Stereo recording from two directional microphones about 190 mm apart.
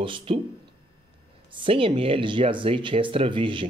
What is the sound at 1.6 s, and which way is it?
Speech, 30° right (ahead or behind).